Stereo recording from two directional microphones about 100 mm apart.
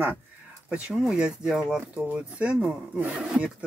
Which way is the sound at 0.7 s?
10° right (ahead or behind).